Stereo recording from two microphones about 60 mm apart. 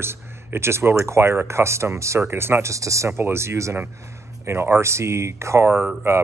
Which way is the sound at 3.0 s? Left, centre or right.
Right.